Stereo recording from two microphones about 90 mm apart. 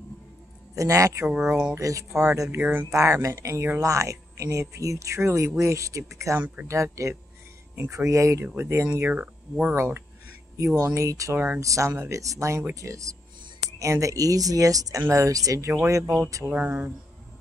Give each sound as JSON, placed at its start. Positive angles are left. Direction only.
{"t": 0.7, "sound": "speech", "side_deg": -35}
{"t": 1.2, "sound": "speech", "side_deg": -10}
{"t": 1.8, "sound": "speech", "side_deg": -35}
{"t": 2.6, "sound": "speech", "side_deg": -20}
{"t": 2.9, "sound": "speech", "side_deg": -35}
{"t": 6.4, "sound": "speech", "side_deg": -15}
{"t": 6.7, "sound": "speech", "side_deg": -35}
{"t": 9.0, "sound": "speech", "side_deg": -15}
{"t": 9.8, "sound": "speech", "side_deg": -25}
{"t": 11.3, "sound": "speech", "side_deg": -15}
{"t": 11.6, "sound": "speech", "side_deg": -35}
{"t": 16.4, "sound": "speech", "side_deg": -15}